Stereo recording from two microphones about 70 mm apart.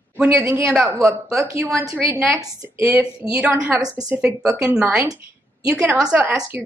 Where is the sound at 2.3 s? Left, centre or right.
Right.